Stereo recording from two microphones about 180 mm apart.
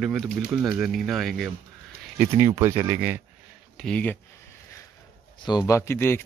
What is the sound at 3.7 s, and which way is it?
Speech, 5° left (ahead or behind).